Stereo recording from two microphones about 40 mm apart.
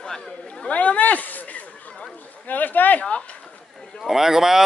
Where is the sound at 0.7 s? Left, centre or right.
Left.